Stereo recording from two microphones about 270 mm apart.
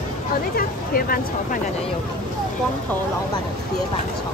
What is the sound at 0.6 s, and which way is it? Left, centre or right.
Speech, left.